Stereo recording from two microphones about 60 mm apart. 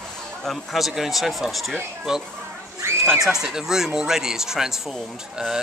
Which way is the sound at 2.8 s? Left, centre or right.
Right.